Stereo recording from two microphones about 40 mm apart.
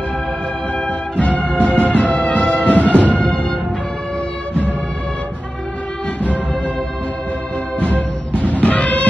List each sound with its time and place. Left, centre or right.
0.8 s music: left
7.8 s music: left